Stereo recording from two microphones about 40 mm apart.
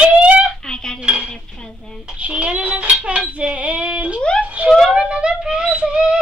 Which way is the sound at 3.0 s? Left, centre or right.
Right.